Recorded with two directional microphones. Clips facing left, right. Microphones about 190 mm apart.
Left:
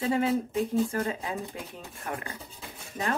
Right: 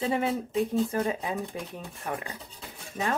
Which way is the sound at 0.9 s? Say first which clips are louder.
Right 2 dB; 20° right (ahead or behind).